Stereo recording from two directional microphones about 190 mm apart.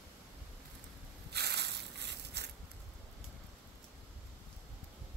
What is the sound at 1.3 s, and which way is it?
Crushing, 60° right (ahead or behind).